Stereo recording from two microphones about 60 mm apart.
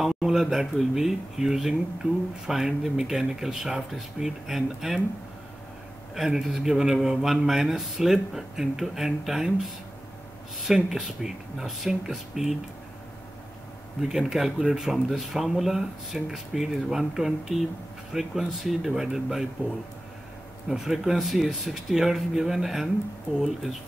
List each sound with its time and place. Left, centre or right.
0.0 s a man's voice: centre
6.1 s a man's voice: centre
10.7 s speech: centre
14.0 s a man's voice: centre
20.6 s a man's voice: centre